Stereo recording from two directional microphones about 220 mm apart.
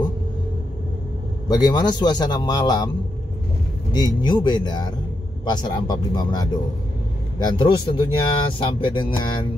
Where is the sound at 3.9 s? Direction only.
20° left (ahead or behind).